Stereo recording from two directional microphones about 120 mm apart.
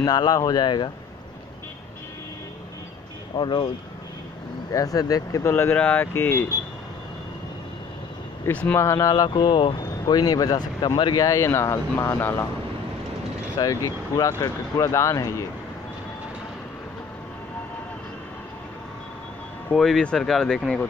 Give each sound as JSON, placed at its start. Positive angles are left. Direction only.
{"t": 0.0, "sound": "speech", "side_deg": 35}
{"t": 3.3, "sound": "speech", "side_deg": 40}
{"t": 4.7, "sound": "speech", "side_deg": 30}
{"t": 5.5, "sound": "speech", "side_deg": 15}
{"t": 8.5, "sound": "speech", "side_deg": 15}
{"t": 8.8, "sound": "speech", "side_deg": 25}
{"t": 13.6, "sound": "speech", "side_deg": 35}
{"t": 19.7, "sound": "speech", "side_deg": 5}